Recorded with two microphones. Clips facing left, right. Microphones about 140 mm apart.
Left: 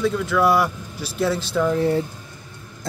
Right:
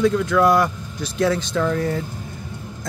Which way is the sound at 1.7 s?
30° left (ahead or behind).